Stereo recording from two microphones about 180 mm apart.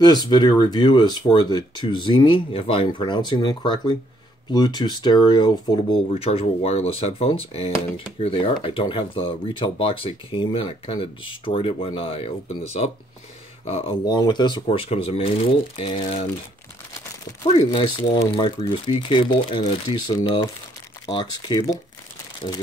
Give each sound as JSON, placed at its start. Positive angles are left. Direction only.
{"t": 0.0, "sound": "speech", "side_deg": 25}
{"t": 14.0, "sound": "speech", "side_deg": 25}
{"t": 17.5, "sound": "speech", "side_deg": 25}
{"t": 21.1, "sound": "speech", "side_deg": 25}